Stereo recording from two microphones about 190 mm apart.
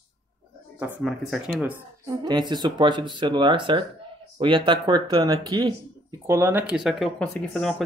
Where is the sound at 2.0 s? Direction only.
25° right (ahead or behind).